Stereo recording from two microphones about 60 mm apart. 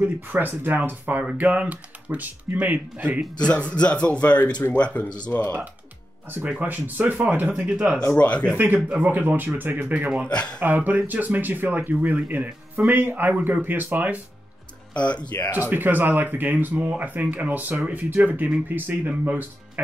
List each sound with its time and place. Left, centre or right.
0.0 s speech: right
3.3 s speech: centre
6.2 s speech: right
8.2 s speech: left
8.8 s speech: right
10.2 s speech: centre
10.6 s speech: right
15.0 s speech: left
15.5 s speech: right